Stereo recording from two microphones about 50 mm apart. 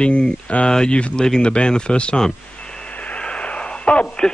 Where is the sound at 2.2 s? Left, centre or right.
Centre.